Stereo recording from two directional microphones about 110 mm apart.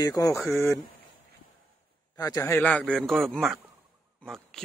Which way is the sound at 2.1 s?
35° left (ahead or behind).